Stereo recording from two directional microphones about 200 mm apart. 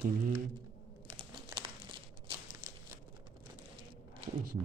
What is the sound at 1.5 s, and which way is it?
Crumpling, 25° right (ahead or behind).